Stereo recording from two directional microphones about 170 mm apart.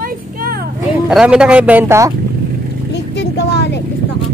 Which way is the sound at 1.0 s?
5° right (ahead or behind).